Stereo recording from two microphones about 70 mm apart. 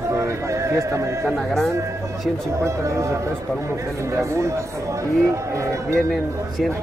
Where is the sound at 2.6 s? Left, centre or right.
Right.